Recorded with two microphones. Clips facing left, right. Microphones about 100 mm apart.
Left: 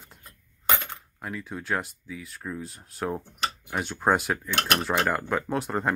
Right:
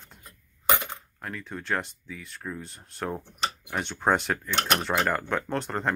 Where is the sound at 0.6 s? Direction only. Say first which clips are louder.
Right 2 dB; 15° right (ahead or behind).